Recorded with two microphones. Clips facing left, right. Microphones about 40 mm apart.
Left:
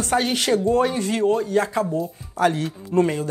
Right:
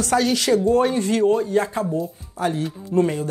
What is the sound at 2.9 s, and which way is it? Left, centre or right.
Speech, left.